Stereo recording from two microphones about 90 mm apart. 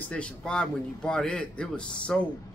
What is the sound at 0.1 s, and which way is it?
A man's voice, 10° left (ahead or behind).